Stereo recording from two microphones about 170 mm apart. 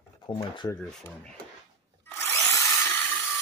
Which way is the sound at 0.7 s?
5° left (ahead or behind).